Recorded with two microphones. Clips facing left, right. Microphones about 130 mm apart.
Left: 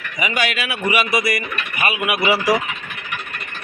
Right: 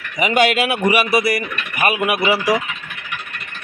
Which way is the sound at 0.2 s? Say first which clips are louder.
Right 7 dB; 55° right (ahead or behind).